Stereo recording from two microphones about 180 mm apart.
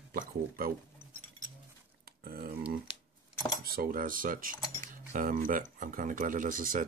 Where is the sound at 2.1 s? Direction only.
55° right (ahead or behind).